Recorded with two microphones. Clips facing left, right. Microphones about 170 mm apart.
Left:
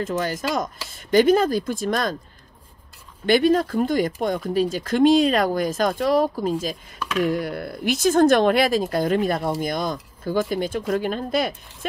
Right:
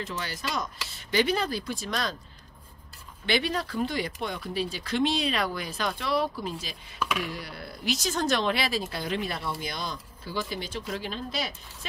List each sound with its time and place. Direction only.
0.0 s speech: 45° left (ahead or behind)
3.3 s speech: 45° left (ahead or behind)
7.0 s a sound: 10° right (ahead or behind)
7.2 s speech: 50° left (ahead or behind)